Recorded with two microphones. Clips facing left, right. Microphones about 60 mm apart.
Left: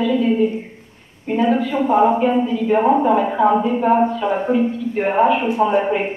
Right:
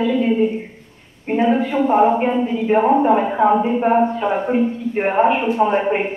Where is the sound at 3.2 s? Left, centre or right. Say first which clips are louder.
Even; centre.